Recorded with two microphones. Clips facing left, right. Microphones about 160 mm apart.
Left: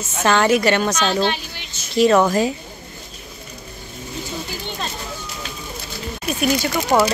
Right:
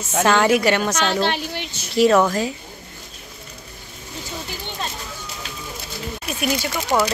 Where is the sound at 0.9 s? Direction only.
65° right (ahead or behind).